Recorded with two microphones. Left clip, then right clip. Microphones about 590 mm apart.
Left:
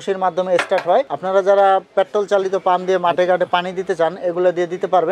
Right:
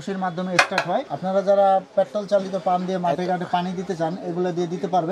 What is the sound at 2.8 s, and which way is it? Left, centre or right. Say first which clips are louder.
Speech: left 8 dB; left.